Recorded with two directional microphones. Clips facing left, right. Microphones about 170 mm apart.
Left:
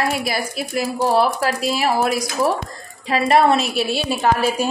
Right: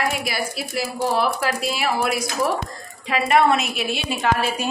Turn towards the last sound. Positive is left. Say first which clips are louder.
# left 4 dB
turn(degrees=35)  # may be behind; listen again after turning